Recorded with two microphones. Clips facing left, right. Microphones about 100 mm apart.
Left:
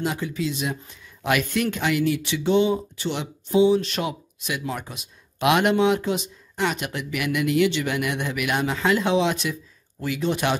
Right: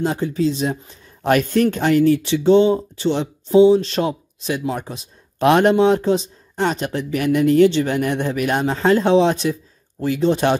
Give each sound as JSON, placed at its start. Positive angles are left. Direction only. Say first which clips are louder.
{"t": 0.0, "sound": "speech", "louder": "right 7 dB", "side_deg": -35}